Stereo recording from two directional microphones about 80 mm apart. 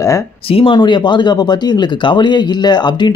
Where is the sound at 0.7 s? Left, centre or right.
Left.